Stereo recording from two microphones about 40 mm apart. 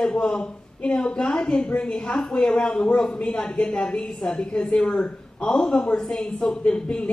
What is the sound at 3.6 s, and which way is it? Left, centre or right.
Speech, left.